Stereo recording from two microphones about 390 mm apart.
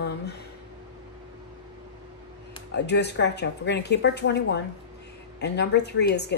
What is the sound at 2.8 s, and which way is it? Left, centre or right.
A woman's voice, left.